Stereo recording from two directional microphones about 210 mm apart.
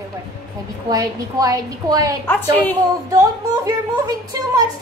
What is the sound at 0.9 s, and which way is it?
A woman's voice, 15° right (ahead or behind).